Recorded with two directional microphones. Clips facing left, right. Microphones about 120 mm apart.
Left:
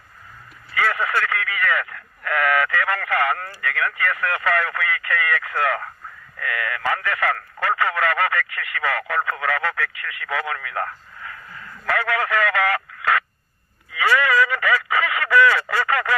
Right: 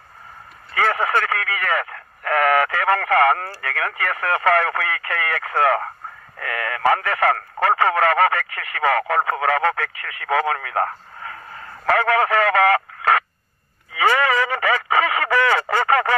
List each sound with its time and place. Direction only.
0.7 s speech: 30° right (ahead or behind)
11.5 s radio: 30° right (ahead or behind)
14.1 s telephone: 30° right (ahead or behind)